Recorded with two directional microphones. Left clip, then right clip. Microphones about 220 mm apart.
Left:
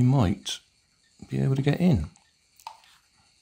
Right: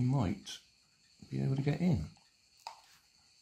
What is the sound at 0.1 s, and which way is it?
Speech, 40° left (ahead or behind).